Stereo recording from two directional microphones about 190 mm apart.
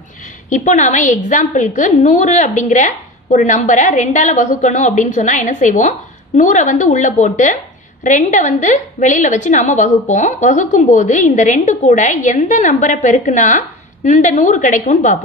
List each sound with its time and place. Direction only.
0.5 s a woman's voice: 40° left (ahead or behind)